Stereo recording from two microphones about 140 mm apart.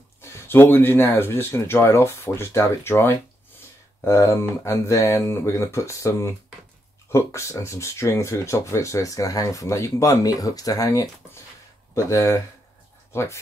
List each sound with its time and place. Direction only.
0.2 s speech: 15° left (ahead or behind)